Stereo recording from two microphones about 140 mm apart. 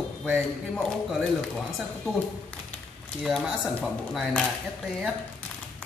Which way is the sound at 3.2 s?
Centre (ahead or behind).